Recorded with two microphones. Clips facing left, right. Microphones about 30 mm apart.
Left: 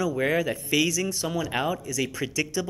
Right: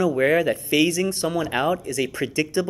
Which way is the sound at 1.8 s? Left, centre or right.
Right.